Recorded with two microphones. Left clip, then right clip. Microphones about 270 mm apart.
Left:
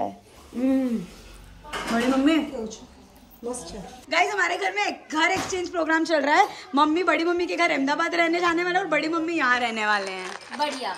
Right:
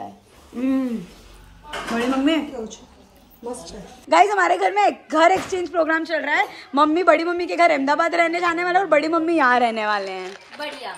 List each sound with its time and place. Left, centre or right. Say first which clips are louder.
0.6 s hoot: right 1 dB; centre
2.0 s speech: right 1 dB; centre
4.1 s a woman's voice: right 7 dB; centre
10.2 s speech: even; left